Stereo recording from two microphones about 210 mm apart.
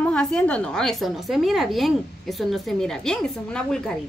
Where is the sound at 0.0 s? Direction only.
5° left (ahead or behind).